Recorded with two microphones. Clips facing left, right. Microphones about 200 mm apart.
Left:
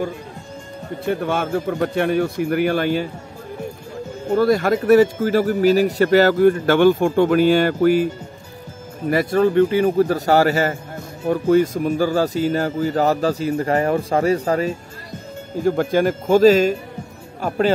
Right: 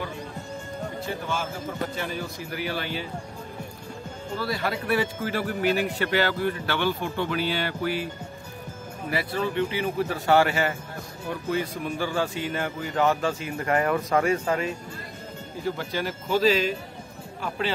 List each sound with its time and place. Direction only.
1.0 s a man's voice: 60° left (ahead or behind)
4.3 s speech: 45° left (ahead or behind)
9.1 s speech: 45° left (ahead or behind)
15.6 s speech: 50° left (ahead or behind)